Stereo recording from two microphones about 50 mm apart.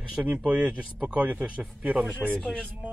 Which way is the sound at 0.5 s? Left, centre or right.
Right.